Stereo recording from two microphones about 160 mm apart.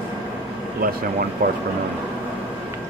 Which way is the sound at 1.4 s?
60° right (ahead or behind).